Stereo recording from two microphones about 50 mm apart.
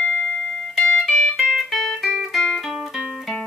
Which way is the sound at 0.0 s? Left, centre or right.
Left.